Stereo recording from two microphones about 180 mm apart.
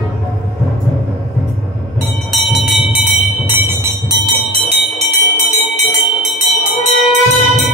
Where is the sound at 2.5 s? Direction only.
5° right (ahead or behind).